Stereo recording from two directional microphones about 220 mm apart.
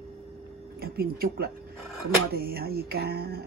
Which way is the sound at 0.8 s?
45° right (ahead or behind).